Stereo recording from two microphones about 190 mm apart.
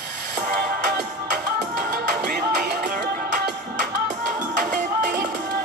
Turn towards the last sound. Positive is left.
turn(degrees=-40)  # may be behind; listen again after turning